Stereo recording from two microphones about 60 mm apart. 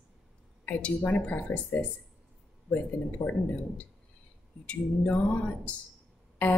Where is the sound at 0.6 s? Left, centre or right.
Left.